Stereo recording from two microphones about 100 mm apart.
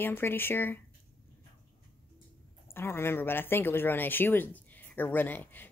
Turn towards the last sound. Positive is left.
turn(degrees=20)  # may be behind; listen again after turning